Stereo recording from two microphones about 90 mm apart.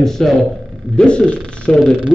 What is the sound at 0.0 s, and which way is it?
A man's voice, 5° left (ahead or behind).